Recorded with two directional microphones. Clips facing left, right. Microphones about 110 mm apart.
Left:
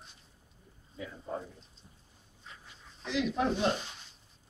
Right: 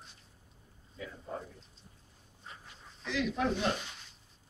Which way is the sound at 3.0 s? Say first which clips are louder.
Left 2 dB; 25° left (ahead or behind).